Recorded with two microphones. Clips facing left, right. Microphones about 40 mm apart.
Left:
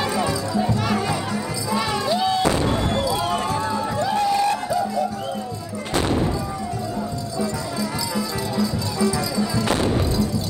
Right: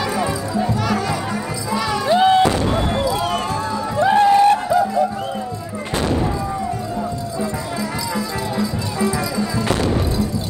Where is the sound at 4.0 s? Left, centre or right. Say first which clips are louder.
Right 9 dB; right.